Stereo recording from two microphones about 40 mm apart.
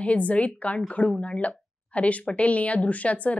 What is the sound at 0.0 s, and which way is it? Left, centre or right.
Speech, left.